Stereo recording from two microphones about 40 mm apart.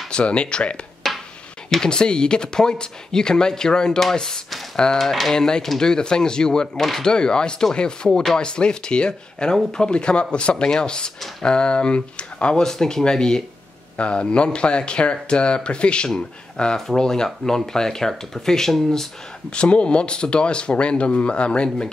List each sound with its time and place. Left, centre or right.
0.1 s speech: left
1.0 s a sound: centre
1.8 s speech: left
5.0 s speech: centre; by 8.1 s left
8.1 s speech: centre
8.4 s speech: left
19.5 s speech: left